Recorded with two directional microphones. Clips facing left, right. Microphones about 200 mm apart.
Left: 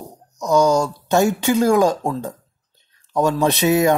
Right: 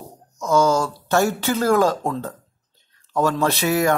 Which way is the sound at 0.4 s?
15° left (ahead or behind).